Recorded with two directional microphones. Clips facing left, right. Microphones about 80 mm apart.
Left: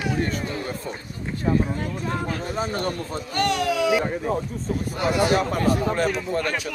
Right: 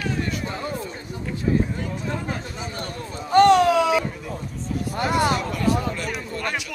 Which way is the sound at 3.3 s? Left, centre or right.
Right.